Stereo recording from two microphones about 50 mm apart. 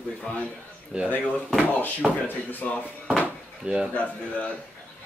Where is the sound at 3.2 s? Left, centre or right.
Centre.